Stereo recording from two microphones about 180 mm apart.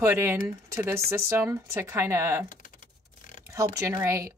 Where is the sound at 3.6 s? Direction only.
15° right (ahead or behind).